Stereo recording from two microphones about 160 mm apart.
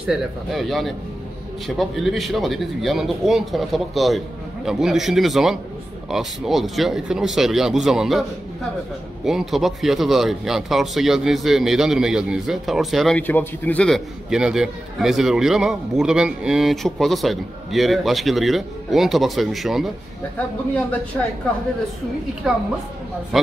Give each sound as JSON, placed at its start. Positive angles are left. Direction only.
{"t": 0.0, "sound": "a man's voice", "side_deg": 0}
{"t": 13.3, "sound": "a man's voice", "side_deg": 10}
{"t": 22.5, "sound": "a man's voice", "side_deg": -5}